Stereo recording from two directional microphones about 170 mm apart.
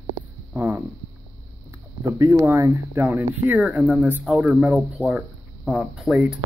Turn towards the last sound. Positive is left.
turn(degrees=-5)  # may be behind; listen again after turning